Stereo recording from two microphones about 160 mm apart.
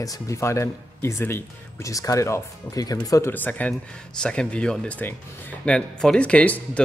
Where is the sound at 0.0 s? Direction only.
20° left (ahead or behind).